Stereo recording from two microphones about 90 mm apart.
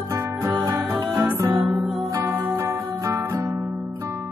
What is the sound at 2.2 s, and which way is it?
Music, 30° right (ahead or behind).